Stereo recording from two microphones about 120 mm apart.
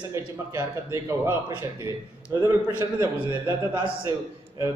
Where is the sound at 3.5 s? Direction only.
40° right (ahead or behind).